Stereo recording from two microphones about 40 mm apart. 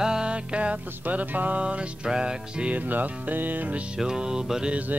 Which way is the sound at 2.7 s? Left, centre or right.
Right.